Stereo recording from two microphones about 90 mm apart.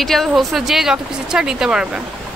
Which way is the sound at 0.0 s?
5° left (ahead or behind).